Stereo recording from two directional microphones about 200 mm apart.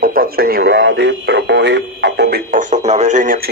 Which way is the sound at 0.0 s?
50° right (ahead or behind).